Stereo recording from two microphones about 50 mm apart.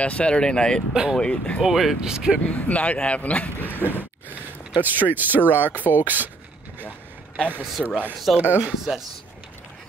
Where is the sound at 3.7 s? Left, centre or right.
Left.